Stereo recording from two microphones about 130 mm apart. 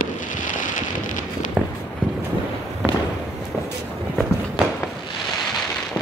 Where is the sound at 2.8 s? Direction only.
5° right (ahead or behind).